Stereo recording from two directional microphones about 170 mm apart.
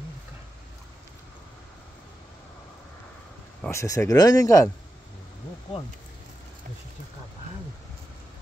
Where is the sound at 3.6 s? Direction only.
15° left (ahead or behind).